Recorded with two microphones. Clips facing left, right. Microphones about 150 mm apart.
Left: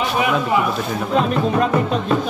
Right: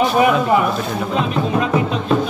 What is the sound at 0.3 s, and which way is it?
Speech, centre (ahead or behind).